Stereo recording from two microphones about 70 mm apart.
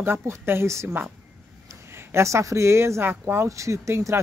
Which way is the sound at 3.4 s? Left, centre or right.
Right.